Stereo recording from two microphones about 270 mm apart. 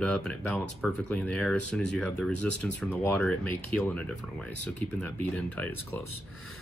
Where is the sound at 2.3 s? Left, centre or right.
Right.